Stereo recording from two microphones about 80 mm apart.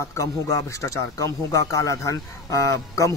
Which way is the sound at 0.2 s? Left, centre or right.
Left.